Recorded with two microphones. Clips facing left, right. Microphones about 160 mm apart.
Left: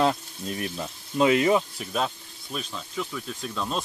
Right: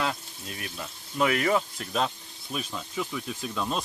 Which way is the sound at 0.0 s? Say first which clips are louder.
Left 7 dB; 35° left (ahead or behind).